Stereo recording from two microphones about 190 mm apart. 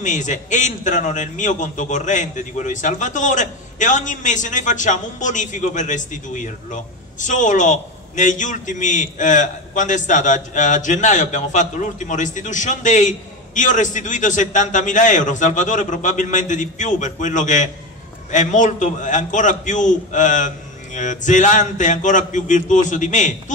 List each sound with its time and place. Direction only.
0.0 s a man's voice: 40° left (ahead or behind)